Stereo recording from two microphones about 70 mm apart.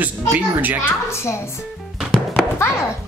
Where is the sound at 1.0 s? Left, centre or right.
Left.